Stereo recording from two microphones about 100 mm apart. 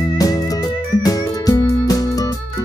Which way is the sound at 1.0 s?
35° left (ahead or behind).